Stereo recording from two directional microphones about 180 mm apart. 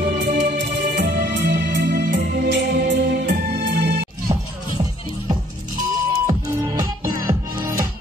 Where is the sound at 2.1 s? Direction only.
55° right (ahead or behind); by 3.9 s 70° right (ahead or behind).